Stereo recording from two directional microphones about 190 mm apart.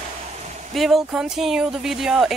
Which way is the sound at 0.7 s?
Centre (ahead or behind).